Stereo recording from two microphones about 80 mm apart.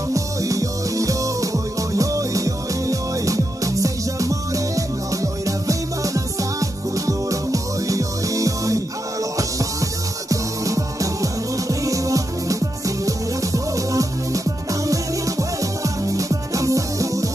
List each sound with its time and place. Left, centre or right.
0.1 s music: right